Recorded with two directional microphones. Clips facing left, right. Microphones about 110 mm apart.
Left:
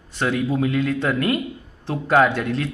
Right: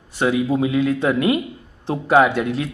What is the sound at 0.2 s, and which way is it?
Speech, 15° right (ahead or behind).